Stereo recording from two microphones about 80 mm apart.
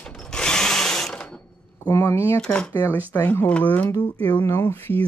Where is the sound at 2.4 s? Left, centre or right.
Centre.